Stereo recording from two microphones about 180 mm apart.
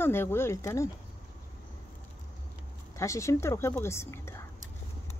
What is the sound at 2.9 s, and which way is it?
Speech, 15° left (ahead or behind).